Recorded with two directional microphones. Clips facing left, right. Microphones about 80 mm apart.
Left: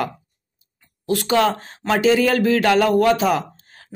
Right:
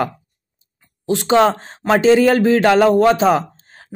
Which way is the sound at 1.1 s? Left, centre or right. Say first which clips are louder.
Right 4 dB; right.